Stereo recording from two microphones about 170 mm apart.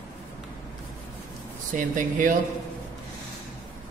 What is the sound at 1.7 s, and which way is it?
Speech, 50° right (ahead or behind).